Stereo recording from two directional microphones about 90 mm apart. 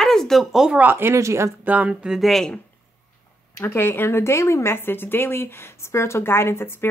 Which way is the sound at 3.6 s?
25° left (ahead or behind).